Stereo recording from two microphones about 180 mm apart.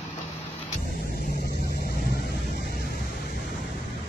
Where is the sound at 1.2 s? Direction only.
55° left (ahead or behind).